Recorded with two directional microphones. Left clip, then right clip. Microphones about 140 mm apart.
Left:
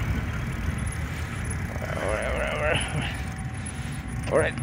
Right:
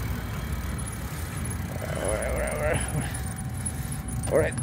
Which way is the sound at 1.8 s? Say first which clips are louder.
Left 1 dB; 25° right (ahead or behind).